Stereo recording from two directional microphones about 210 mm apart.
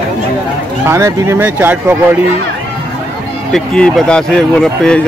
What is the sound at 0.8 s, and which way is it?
Speech, 15° right (ahead or behind).